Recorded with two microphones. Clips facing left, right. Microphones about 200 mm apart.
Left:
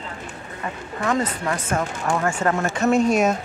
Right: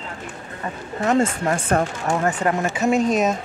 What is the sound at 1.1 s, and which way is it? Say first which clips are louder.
Speech: right 4 dB; 30° right (ahead or behind).